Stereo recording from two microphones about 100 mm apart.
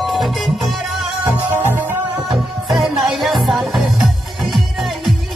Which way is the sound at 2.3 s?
Centre (ahead or behind).